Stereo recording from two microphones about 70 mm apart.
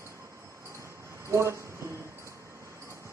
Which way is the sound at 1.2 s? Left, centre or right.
Right.